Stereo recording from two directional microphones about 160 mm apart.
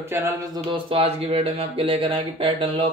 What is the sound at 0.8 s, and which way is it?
Speech, 40° right (ahead or behind).